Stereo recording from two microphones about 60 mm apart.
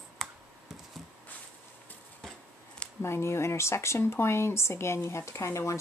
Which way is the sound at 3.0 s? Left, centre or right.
Left.